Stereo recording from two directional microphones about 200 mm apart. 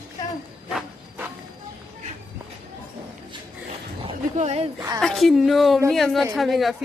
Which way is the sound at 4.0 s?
30° right (ahead or behind).